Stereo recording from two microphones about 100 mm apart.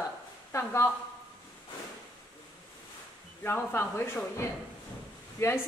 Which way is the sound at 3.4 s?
20° left (ahead or behind).